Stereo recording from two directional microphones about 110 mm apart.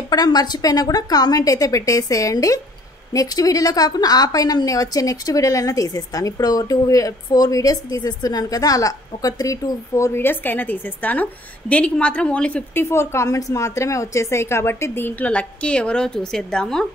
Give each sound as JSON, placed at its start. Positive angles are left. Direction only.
{"t": 0.1, "sound": "a woman's voice", "side_deg": 40}
{"t": 12.8, "sound": "a woman's voice", "side_deg": 25}